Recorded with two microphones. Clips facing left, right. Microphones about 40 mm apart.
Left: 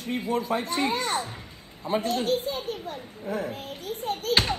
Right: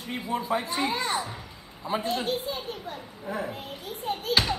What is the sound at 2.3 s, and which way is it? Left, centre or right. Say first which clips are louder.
Speech: left 3 dB; left.